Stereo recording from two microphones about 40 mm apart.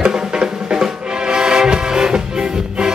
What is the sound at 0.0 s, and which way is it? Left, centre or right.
Music, centre.